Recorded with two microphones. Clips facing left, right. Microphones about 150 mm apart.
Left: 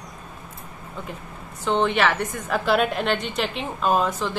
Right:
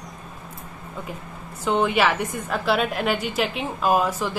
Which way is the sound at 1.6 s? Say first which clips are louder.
Even; 5° right (ahead or behind).